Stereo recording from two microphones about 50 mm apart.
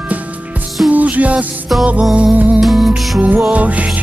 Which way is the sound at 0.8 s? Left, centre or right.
Right.